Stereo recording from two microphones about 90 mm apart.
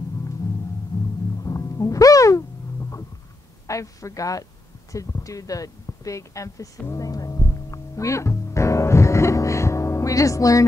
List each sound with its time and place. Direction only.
0.9 s music: 35° left (ahead or behind)
3.6 s speech: 35° left (ahead or behind)
6.9 s music: 40° left (ahead or behind)